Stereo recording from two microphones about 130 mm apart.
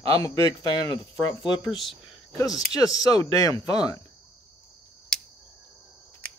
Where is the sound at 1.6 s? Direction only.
Centre (ahead or behind).